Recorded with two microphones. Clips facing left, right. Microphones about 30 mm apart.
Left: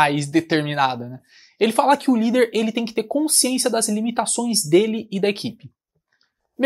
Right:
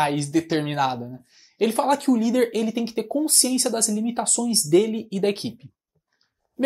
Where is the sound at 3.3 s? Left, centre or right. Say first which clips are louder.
Left 3 dB; left.